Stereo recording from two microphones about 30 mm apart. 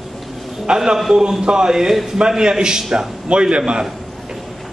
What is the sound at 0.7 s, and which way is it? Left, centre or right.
A man's voice, right.